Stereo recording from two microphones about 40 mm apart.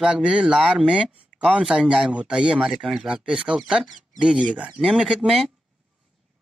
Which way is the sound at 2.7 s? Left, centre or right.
Centre.